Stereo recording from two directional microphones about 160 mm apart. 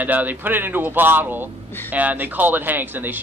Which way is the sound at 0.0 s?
10° right (ahead or behind).